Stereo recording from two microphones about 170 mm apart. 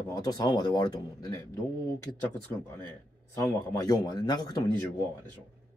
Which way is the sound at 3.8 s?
25° left (ahead or behind).